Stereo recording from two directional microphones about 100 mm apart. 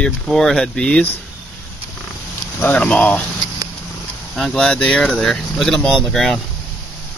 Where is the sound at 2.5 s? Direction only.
20° left (ahead or behind).